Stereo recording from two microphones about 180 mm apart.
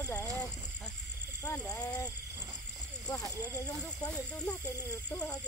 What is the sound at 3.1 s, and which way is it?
Speech, 15° left (ahead or behind).